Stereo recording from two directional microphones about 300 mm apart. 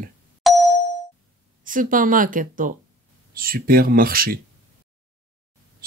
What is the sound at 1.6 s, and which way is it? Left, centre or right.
Speech, right.